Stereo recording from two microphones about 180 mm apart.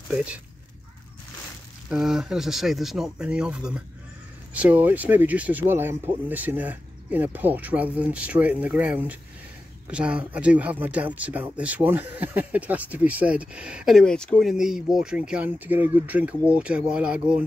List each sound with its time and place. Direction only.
0.1 s speech: 5° right (ahead or behind)
1.9 s speech: centre (ahead or behind)